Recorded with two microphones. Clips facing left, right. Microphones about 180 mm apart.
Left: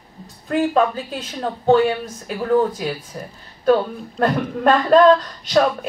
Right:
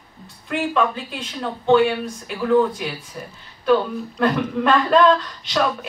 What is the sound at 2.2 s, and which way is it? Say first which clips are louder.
Speech: even; 40° left (ahead or behind).